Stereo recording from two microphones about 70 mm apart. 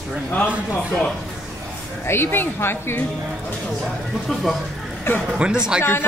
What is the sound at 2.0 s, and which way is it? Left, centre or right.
Speech, left.